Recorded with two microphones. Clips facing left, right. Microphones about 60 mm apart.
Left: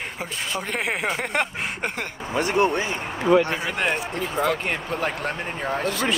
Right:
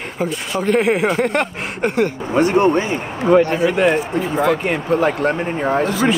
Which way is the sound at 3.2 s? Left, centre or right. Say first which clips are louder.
Right 5 dB; right.